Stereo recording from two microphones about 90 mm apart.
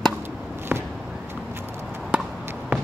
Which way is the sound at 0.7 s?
20° right (ahead or behind).